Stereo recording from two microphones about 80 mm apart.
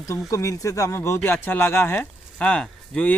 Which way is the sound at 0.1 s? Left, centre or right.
Left.